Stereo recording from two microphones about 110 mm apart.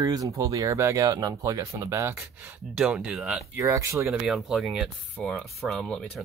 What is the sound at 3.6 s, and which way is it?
Speech, 25° right (ahead or behind).